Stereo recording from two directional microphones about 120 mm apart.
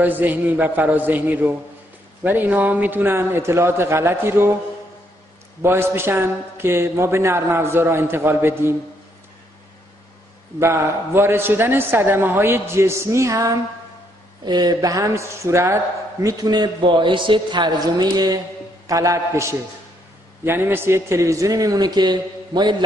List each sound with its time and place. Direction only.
0.0 s a man's voice: 15° right (ahead or behind)
5.6 s a man's voice: 20° right (ahead or behind)
10.6 s a man's voice: 20° right (ahead or behind)
20.4 s a man's voice: 20° right (ahead or behind); by 22.8 s 40° right (ahead or behind)